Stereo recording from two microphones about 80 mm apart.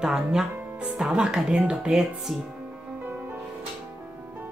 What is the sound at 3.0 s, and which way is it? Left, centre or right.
Music, right.